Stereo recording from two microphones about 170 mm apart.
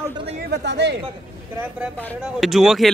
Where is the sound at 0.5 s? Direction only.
85° right.